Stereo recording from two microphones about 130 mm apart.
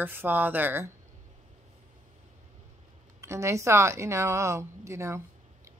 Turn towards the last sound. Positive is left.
turn(degrees=-20)  # may be behind; listen again after turning